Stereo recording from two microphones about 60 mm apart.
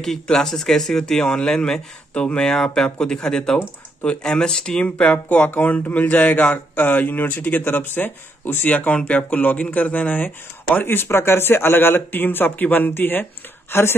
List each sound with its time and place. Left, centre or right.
0.0 s speech: centre; by 13.9 s left